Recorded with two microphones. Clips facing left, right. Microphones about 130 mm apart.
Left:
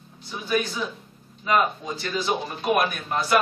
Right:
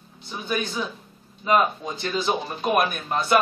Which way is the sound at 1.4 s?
25° right (ahead or behind).